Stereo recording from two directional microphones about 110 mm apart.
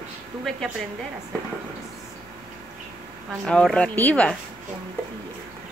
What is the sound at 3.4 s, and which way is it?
Speech, 5° left (ahead or behind).